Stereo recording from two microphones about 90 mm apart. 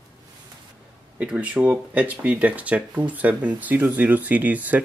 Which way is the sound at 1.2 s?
15° right (ahead or behind).